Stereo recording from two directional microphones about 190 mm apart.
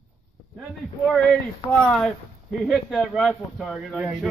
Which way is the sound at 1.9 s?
Centre (ahead or behind).